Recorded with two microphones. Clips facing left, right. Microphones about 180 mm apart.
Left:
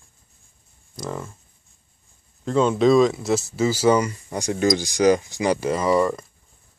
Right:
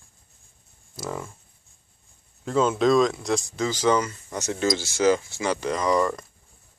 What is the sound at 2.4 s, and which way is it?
Speech, 5° right (ahead or behind).